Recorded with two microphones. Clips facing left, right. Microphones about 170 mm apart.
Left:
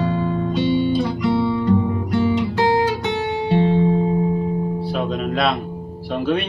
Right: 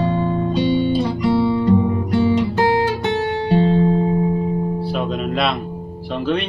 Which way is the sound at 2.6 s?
20° left (ahead or behind).